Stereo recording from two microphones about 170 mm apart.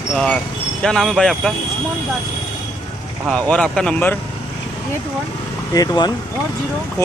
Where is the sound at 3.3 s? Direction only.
5° left (ahead or behind).